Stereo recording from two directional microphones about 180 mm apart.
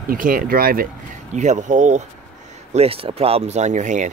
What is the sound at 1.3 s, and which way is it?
Speech, 40° right (ahead or behind).